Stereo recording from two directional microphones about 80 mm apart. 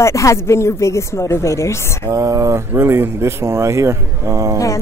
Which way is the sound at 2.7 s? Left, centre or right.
Right.